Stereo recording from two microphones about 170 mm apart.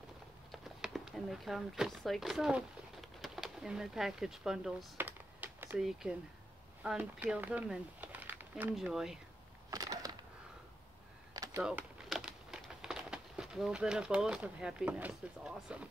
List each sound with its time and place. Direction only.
0.5 s speech: centre (ahead or behind)
4.9 s computer keyboard: 10° right (ahead or behind)
6.8 s speech: 10° right (ahead or behind)
9.7 s a sound: 20° right (ahead or behind)
11.3 s a sound: 20° right (ahead or behind)
11.6 s speech: 5° right (ahead or behind)